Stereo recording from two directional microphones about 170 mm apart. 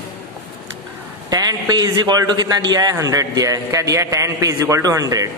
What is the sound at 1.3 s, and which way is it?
A man's voice, 20° right (ahead or behind).